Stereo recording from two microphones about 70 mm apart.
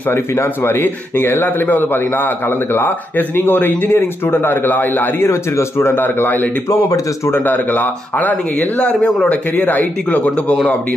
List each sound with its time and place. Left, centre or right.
0.1 s speech: left